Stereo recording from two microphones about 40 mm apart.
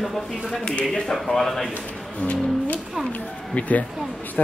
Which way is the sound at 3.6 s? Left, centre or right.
Left.